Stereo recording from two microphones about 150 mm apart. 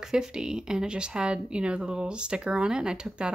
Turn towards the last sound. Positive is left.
turn(degrees=-5)  # may be behind; listen again after turning